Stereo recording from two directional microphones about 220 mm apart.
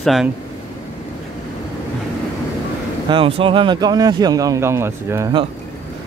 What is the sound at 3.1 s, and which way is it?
Speech, 25° right (ahead or behind).